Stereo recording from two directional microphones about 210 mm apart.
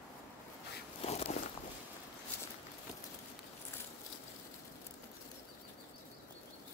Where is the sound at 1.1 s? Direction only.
30° left (ahead or behind).